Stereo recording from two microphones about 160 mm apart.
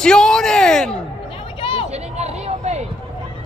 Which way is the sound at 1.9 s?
45° right (ahead or behind).